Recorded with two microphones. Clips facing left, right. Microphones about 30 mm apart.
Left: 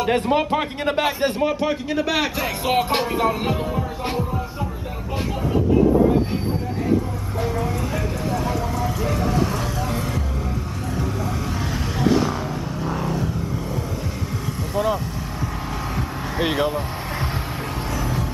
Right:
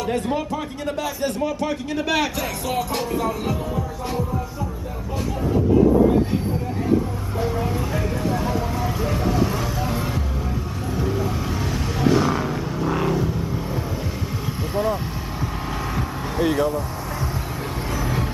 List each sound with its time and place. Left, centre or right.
0.0 s music: left
1.4 s a man's voice: left
1.9 s a man's voice: centre
2.6 s music: left
7.3 s vehicle: centre
12.3 s vehicle: centre
16.3 s music: left